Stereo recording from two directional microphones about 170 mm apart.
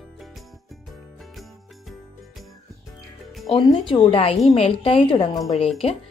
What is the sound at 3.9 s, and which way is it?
A woman's voice, 30° left (ahead or behind).